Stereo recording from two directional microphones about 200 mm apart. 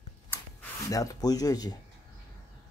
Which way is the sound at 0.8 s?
15° left (ahead or behind).